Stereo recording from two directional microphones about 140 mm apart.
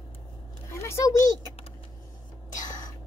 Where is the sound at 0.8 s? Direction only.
20° left (ahead or behind).